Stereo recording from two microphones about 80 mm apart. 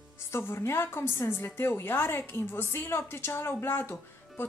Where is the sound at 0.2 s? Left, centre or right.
Left.